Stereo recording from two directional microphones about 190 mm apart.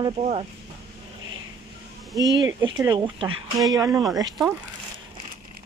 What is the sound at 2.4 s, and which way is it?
Speech, 15° right (ahead or behind).